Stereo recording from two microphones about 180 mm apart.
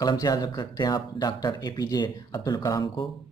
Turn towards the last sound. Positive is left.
turn(degrees=20)  # may be behind; listen again after turning